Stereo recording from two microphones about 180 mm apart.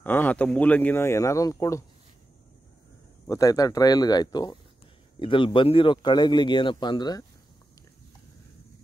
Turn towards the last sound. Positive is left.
turn(degrees=25)  # may be behind; listen again after turning